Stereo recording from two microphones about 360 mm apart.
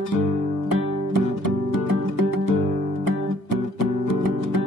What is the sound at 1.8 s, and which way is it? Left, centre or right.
Music, left.